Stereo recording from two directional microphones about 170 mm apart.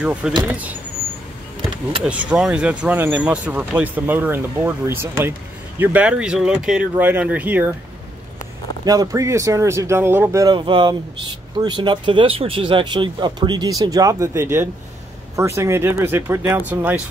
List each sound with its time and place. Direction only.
0.0 s speech: 5° right (ahead or behind)
2.0 s speech: 5° right (ahead or behind)
8.8 s speech: 20° right (ahead or behind)